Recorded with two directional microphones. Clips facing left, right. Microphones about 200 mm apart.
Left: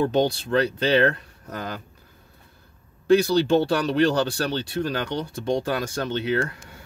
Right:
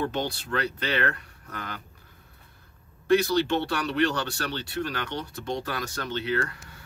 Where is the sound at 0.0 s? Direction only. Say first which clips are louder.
Left 8 dB; 30° left (ahead or behind).